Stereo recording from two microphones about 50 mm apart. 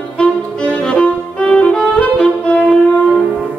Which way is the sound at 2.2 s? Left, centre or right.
Left.